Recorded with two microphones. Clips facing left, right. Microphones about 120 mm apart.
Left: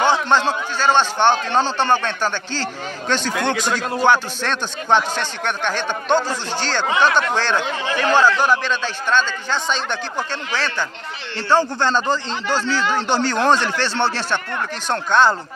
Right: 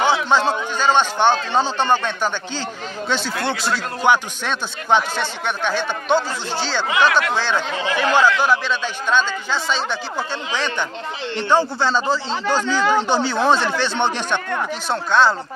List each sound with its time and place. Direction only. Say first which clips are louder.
0.0 s a sound: even; 10° right (ahead or behind)
0.9 s a man's voice: left 1 dB; 10° right (ahead or behind)
10.5 s a man's voice: right 1 dB; 20° right (ahead or behind)
11.8 s a man's voice: even; 5° right (ahead or behind)
14.9 s a man's voice: left 1 dB; centre (ahead or behind)